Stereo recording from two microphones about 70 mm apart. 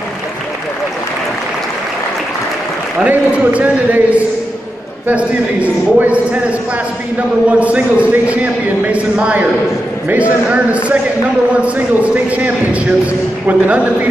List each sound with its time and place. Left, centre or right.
3.0 s speech: centre